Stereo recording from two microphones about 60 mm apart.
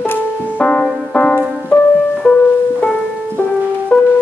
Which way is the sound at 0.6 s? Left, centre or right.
Centre.